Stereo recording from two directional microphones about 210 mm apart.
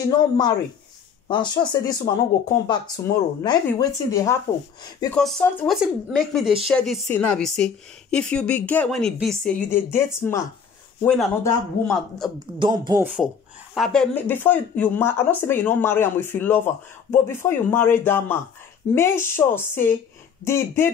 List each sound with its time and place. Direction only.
0.1 s speech: 20° left (ahead or behind)
11.7 s a man's voice: 45° left (ahead or behind)
12.4 s speech: 20° right (ahead or behind)
13.7 s speech: centre (ahead or behind)